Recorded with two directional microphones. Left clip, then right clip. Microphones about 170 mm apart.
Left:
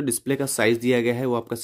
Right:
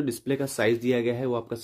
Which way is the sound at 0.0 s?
35° left (ahead or behind).